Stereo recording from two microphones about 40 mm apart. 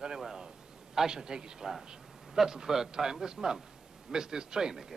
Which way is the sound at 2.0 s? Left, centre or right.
Centre.